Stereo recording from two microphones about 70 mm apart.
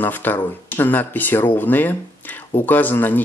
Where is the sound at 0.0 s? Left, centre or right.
Left.